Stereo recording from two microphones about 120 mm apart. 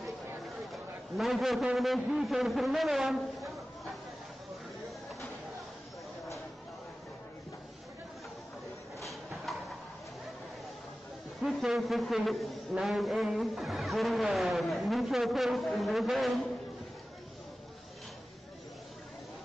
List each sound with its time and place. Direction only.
1.1 s a man's voice: centre (ahead or behind)
9.0 s a sound: centre (ahead or behind)
11.4 s a man's voice: centre (ahead or behind)